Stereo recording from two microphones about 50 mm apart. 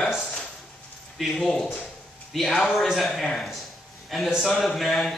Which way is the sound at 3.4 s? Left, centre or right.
Centre.